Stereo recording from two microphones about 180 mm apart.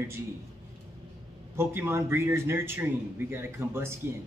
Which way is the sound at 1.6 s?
15° right (ahead or behind).